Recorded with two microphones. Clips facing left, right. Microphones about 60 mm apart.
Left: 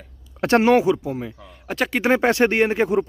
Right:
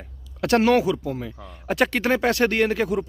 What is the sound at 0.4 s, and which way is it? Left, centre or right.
Speech, left.